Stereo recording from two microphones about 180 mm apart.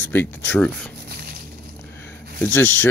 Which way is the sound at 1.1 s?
60° right (ahead or behind).